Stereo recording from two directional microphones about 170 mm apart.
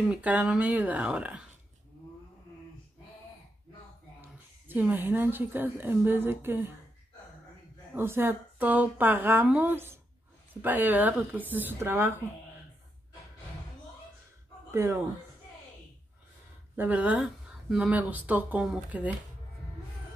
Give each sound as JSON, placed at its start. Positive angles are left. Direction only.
{"t": 0.1, "sound": "speech", "side_deg": -10}
{"t": 4.2, "sound": "a woman's voice", "side_deg": -10}
{"t": 7.9, "sound": "speech", "side_deg": -15}
{"t": 14.7, "sound": "speech", "side_deg": -15}
{"t": 16.7, "sound": "speech", "side_deg": -10}